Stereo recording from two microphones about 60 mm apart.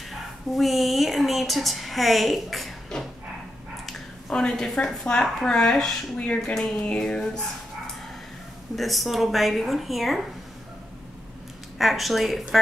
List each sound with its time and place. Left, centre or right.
0.1 s speech: centre
4.3 s a woman's voice: centre
6.8 s dog: centre
8.7 s a woman's voice: centre
11.8 s a woman's voice: centre